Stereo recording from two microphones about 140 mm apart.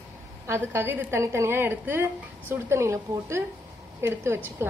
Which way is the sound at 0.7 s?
15° right (ahead or behind).